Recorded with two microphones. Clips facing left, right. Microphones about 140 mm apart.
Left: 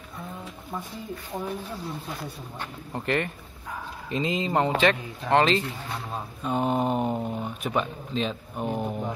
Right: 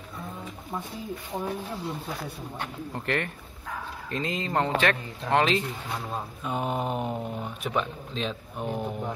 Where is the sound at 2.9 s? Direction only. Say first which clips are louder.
Left 4 dB; 5° left (ahead or behind).